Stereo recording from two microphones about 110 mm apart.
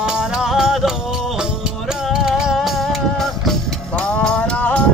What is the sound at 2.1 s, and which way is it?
Music, 5° right (ahead or behind).